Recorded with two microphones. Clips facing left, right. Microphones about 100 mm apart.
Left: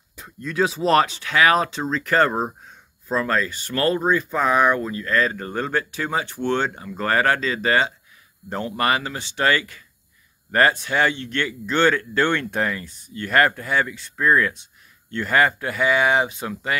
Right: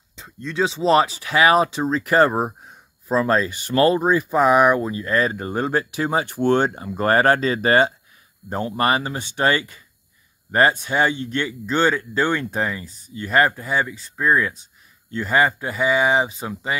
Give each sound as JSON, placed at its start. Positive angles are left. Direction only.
{"t": 0.2, "sound": "speech", "side_deg": 5}
{"t": 6.3, "sound": "speech", "side_deg": -45}
{"t": 6.7, "sound": "speech", "side_deg": -25}
{"t": 8.6, "sound": "speech", "side_deg": -30}